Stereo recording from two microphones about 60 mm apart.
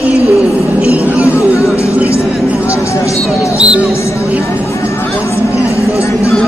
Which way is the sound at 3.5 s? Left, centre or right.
Right.